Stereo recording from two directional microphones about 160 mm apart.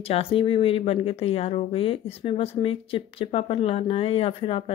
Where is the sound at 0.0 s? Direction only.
35° left (ahead or behind).